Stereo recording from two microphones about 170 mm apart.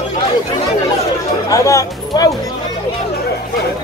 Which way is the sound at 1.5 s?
20° left (ahead or behind).